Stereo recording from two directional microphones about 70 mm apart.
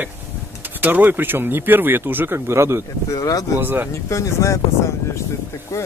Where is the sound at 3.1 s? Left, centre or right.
Left.